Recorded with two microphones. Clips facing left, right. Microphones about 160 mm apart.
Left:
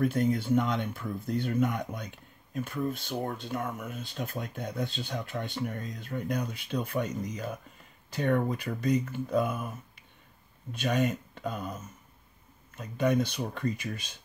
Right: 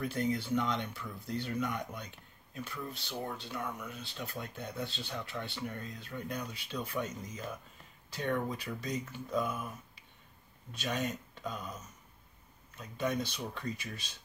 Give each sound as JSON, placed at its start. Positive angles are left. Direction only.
{"t": 0.0, "sound": "speech", "side_deg": 50}
{"t": 10.7, "sound": "speech", "side_deg": 55}
{"t": 12.7, "sound": "speech", "side_deg": 55}